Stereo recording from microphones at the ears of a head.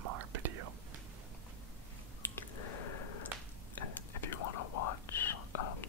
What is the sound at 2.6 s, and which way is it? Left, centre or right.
Whispering, left.